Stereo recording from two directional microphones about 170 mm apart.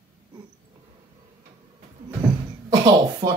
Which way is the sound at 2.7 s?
25° right (ahead or behind).